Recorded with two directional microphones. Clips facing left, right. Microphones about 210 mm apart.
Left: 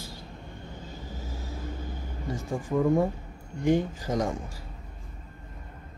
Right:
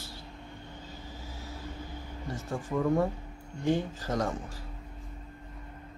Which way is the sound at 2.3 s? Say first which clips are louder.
Left 4 dB; 15° left (ahead or behind).